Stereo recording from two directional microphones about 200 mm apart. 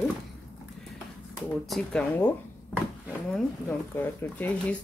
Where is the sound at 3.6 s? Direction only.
10° left (ahead or behind).